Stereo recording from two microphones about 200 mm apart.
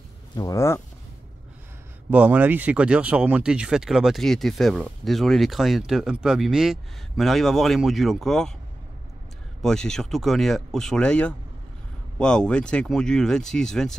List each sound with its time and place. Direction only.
0.4 s speech: 15° left (ahead or behind)
2.0 s speech: 5° right (ahead or behind)
9.6 s speech: centre (ahead or behind)